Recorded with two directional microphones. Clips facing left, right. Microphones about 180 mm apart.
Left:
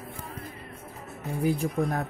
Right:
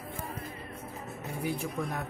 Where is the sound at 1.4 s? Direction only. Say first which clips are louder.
Left 8 dB; 35° left (ahead or behind).